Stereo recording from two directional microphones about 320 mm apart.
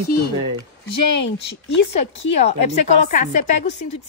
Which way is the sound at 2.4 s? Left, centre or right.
Left.